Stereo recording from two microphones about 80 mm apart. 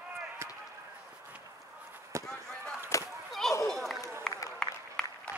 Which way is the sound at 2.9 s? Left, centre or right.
Left.